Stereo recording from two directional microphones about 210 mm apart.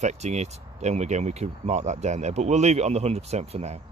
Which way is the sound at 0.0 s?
35° right (ahead or behind).